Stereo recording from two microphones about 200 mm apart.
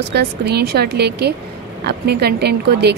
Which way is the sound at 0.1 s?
55° right (ahead or behind).